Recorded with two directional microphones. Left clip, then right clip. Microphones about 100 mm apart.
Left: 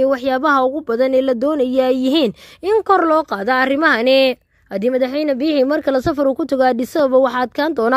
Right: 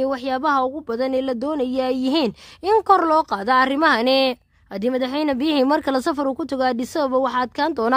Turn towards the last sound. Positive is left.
turn(degrees=25)  # may be behind; listen again after turning